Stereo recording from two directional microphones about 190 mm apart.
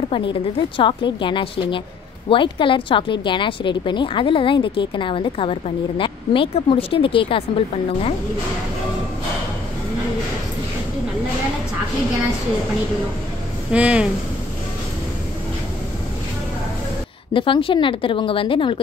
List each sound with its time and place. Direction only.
0.1 s a woman's voice: 25° left (ahead or behind)
13.7 s speech: 5° right (ahead or behind)
17.3 s a woman's voice: 25° left (ahead or behind)